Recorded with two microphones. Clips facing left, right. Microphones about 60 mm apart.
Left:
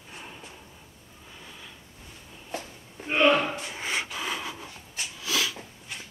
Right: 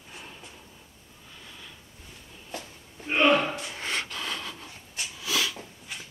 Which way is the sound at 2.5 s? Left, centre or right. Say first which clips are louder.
Left 3 dB; left.